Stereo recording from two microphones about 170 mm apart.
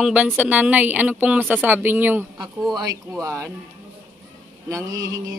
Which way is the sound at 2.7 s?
25° right (ahead or behind).